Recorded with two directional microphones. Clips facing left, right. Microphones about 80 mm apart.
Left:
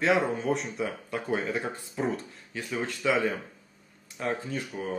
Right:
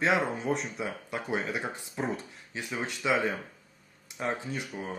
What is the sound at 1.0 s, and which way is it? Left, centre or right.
Speech, centre.